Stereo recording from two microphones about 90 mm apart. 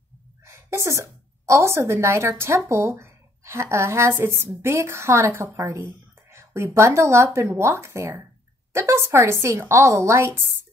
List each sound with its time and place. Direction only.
0.5 s a woman's voice: 30° right (ahead or behind)